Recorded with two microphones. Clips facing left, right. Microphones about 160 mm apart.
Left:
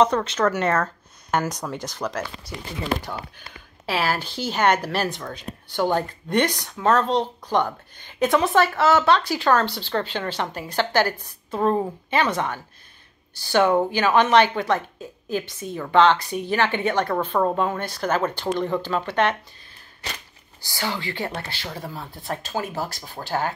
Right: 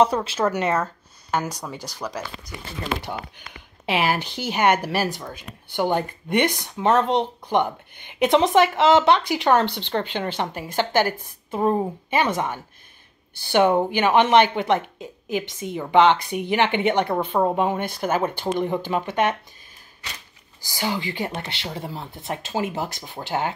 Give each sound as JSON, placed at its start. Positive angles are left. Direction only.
{"t": 0.0, "sound": "a woman's voice", "side_deg": -10}
{"t": 13.5, "sound": "a woman's voice", "side_deg": -15}
{"t": 20.6, "sound": "speech", "side_deg": -15}